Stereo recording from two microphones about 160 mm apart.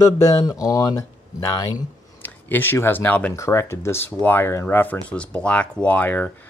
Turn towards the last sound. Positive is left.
turn(degrees=10)  # may be behind; listen again after turning